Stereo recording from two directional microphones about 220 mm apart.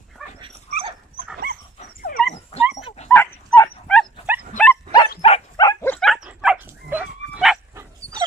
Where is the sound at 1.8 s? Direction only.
40° left (ahead or behind).